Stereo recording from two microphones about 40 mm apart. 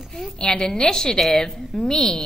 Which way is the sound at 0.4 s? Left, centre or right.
Left.